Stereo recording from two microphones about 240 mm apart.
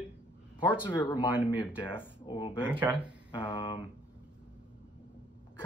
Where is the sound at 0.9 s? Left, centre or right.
Centre.